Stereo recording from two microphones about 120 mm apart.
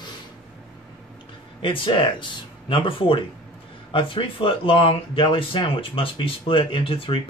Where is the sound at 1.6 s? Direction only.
45° left (ahead or behind).